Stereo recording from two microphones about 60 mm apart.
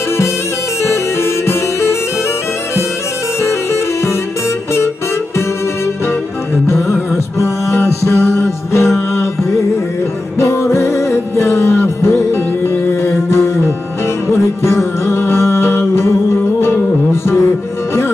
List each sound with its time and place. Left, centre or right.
1.5 s music: left
6.7 s music: left
10.4 s music: left
14.6 s music: left